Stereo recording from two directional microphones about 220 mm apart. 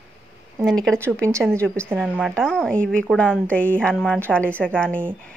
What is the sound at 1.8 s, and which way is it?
A woman's voice, 5° right (ahead or behind).